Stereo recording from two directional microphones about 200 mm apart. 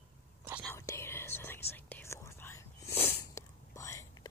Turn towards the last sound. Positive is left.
turn(degrees=15)  # may be behind; listen again after turning